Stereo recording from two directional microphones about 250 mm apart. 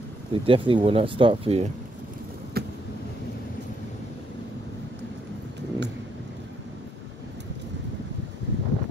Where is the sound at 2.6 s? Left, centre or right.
Right.